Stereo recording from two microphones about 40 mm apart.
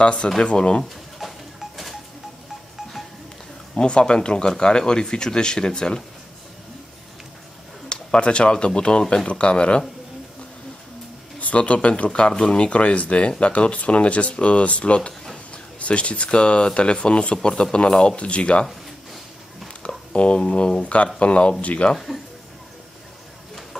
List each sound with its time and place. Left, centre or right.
0.0 s speech: left
1.2 s a sound: centre
3.7 s speech: left
7.9 s speech: left
11.3 s speech: left
12.1 s speech: left
20.1 s speech: left
20.8 s speech: left
21.9 s speech: centre